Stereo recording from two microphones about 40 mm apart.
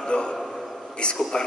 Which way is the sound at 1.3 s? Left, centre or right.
Centre.